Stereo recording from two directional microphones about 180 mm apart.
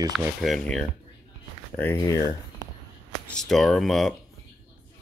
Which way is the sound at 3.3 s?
Centre (ahead or behind).